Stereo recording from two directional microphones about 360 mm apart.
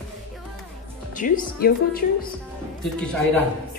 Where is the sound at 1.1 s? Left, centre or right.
Left.